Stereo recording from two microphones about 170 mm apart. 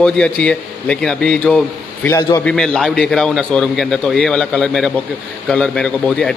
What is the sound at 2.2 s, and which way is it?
Speech, 25° left (ahead or behind).